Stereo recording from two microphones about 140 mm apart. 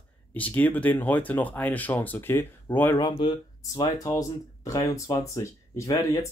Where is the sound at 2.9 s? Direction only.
35° left (ahead or behind).